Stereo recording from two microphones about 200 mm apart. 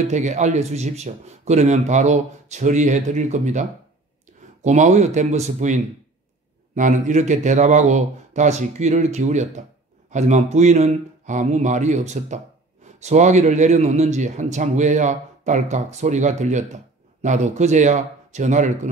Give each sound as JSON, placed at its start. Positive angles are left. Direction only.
{"t": 0.1, "sound": "a man's voice", "side_deg": -35}
{"t": 4.6, "sound": "a man's voice", "side_deg": -35}